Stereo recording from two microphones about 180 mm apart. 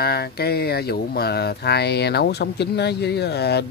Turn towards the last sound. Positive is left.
turn(degrees=65)  # may be behind; listen again after turning